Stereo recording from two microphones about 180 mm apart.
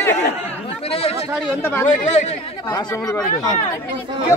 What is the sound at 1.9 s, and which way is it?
Speech, 40° left (ahead or behind).